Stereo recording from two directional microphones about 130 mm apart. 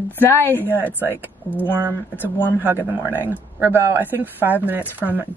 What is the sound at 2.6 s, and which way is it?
A woman's voice, 15° right (ahead or behind).